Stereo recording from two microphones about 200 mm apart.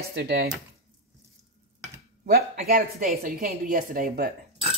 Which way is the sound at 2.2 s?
45° right (ahead or behind).